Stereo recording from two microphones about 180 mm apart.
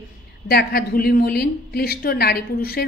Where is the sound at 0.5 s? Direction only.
60° left (ahead or behind).